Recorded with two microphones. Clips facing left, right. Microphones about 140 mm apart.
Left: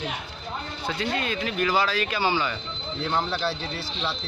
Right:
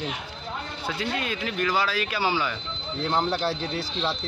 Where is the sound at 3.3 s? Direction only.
45° right (ahead or behind).